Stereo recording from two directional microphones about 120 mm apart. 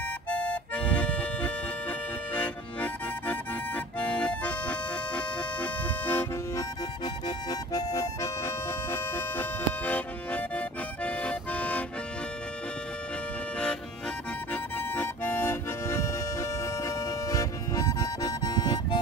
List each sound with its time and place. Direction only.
0.3 s music: 10° left (ahead or behind)
7.2 s music: 30° left (ahead or behind); by 11.8 s 10° left (ahead or behind)
14.5 s accordion: 15° left (ahead or behind); by 18.9 s 35° left (ahead or behind)